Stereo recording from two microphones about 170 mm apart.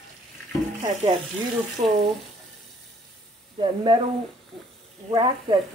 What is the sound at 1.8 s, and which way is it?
Speech, 35° right (ahead or behind).